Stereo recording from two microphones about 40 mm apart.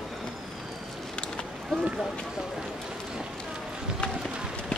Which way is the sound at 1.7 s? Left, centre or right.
Centre.